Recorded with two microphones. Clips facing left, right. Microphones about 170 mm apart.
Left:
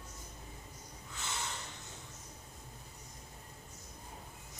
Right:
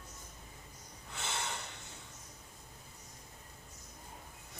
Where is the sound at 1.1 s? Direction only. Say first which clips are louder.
Right 2 dB; 65° right (ahead or behind).